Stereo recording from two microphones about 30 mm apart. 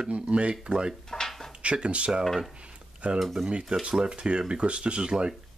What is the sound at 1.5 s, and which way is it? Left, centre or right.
Speech, right.